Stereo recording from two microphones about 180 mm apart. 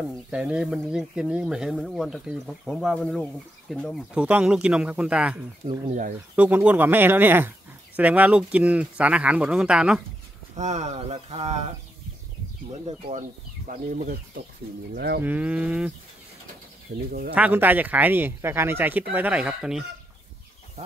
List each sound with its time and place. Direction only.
0.3 s speech: 5° right (ahead or behind)
5.9 s speech: 45° right (ahead or behind)
6.3 s speech: 10° right (ahead or behind)
10.5 s speech: 40° right (ahead or behind)
12.8 s speech: 35° right (ahead or behind)
15.0 s speech: 65° right (ahead or behind)
15.2 s speech: 10° right (ahead or behind)
16.9 s speech: 55° right (ahead or behind)
17.3 s speech: 10° right (ahead or behind)